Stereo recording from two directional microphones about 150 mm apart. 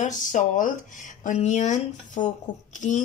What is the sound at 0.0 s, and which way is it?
Speech, 60° left (ahead or behind).